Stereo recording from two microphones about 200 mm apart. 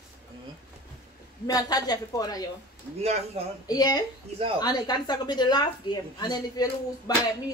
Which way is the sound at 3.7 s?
20° left (ahead or behind).